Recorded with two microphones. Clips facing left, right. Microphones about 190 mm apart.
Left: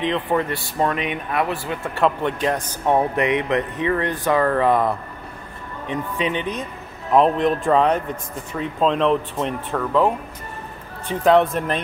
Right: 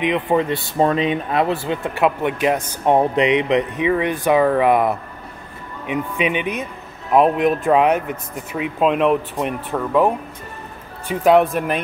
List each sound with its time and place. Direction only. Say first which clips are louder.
0.0 s speech: right 3 dB; 15° right (ahead or behind)
0.7 s speech: right 5 dB; 30° right (ahead or behind)
2.0 s speech: right 1 dB; 10° right (ahead or behind)